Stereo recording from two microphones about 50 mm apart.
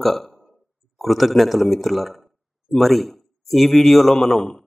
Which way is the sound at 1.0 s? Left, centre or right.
Centre.